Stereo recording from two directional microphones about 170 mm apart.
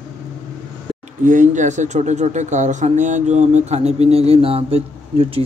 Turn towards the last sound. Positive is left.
turn(degrees=-35)  # may be behind; listen again after turning